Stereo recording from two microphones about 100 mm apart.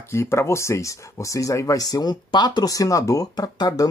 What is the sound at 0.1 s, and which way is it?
Speech, 25° left (ahead or behind).